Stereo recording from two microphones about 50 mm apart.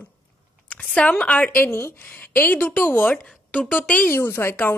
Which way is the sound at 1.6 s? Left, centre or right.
Left.